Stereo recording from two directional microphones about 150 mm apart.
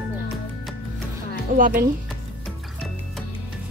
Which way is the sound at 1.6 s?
65° right (ahead or behind).